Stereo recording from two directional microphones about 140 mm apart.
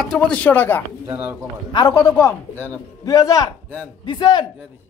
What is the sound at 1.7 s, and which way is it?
Speech, 30° left (ahead or behind).